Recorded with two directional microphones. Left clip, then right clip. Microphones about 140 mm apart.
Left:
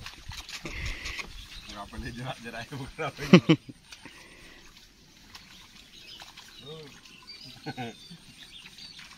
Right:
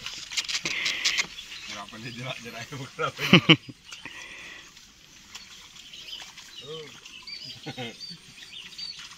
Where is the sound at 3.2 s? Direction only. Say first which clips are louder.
Right 3 dB; 5° left (ahead or behind).